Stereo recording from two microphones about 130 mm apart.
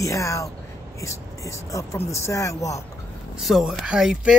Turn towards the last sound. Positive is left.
turn(degrees=-5)  # may be behind; listen again after turning